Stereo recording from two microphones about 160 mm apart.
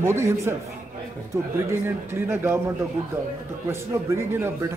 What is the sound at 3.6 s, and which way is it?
A man's voice, 15° right (ahead or behind).